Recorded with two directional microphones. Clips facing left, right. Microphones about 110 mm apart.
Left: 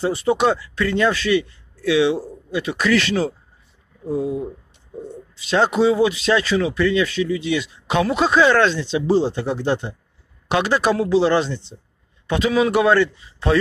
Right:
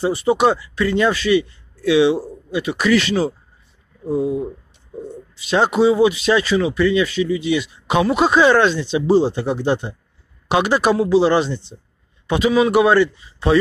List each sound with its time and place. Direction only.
0.0 s speech: 5° right (ahead or behind)